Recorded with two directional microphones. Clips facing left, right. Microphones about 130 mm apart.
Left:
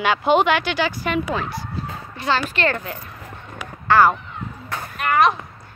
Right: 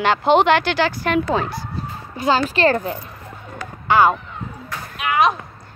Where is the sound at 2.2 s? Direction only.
40° right (ahead or behind).